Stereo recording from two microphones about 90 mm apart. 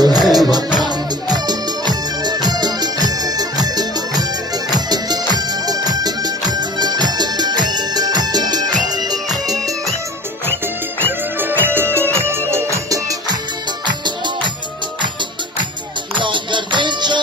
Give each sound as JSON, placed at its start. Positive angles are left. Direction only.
{"t": 0.0, "sound": "music", "side_deg": -50}
{"t": 11.1, "sound": "music", "side_deg": -20}
{"t": 13.8, "sound": "music", "side_deg": -60}
{"t": 16.2, "sound": "music", "side_deg": -60}